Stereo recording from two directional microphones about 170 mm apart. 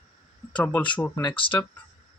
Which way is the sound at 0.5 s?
10° left (ahead or behind).